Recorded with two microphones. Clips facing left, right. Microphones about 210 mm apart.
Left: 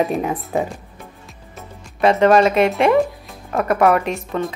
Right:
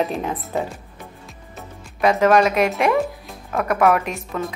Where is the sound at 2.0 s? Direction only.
Centre (ahead or behind).